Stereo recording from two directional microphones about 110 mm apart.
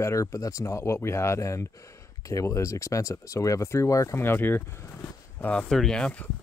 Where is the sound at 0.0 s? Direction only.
25° left (ahead or behind); by 6.2 s 10° left (ahead or behind).